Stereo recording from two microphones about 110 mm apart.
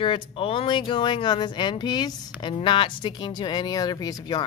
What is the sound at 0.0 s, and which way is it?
Speech, 55° left (ahead or behind).